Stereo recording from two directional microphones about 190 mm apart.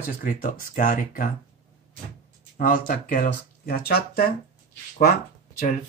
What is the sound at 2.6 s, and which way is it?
Speech, 45° left (ahead or behind).